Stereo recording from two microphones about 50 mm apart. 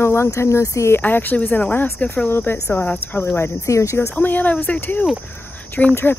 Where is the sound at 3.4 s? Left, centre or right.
Left.